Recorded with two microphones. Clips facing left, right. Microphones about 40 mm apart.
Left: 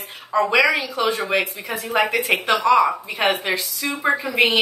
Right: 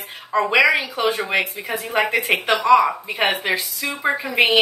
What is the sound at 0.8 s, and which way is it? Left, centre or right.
Speech, right.